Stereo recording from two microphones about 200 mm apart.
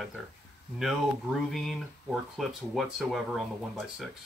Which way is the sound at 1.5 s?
Centre (ahead or behind).